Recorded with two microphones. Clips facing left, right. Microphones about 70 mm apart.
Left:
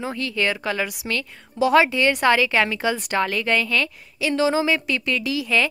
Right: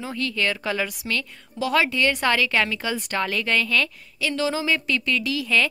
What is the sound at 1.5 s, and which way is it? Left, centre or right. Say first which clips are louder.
Speech: left 5 dB; centre.